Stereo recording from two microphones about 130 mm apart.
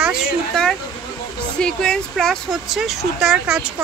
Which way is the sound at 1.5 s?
5° left (ahead or behind).